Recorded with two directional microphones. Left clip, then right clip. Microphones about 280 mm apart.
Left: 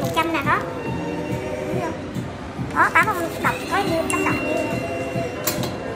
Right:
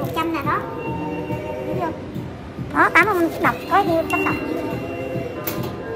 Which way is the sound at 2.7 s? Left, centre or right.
Right.